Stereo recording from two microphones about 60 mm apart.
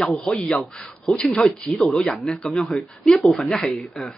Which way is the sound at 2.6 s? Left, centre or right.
Centre.